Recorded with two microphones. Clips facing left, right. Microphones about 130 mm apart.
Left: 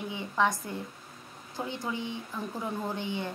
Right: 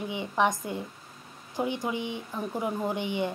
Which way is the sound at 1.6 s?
15° right (ahead or behind).